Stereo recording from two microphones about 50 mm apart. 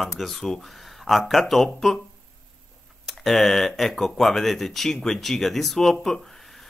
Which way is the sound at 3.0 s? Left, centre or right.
Centre.